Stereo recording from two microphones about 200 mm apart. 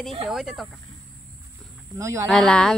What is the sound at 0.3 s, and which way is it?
Speech, centre (ahead or behind).